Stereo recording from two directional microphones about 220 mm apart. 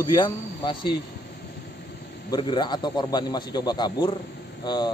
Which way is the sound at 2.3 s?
20° left (ahead or behind).